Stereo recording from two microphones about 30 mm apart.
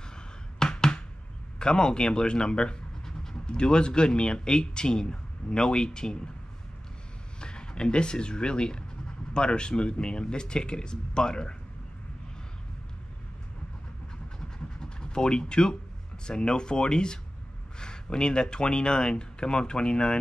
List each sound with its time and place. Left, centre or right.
0.6 s a sound: left
1.6 s a man's voice: left
7.3 s speech: left
14.8 s a man's voice: left